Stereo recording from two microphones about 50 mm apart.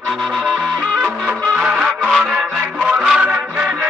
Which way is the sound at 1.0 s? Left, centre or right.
Right.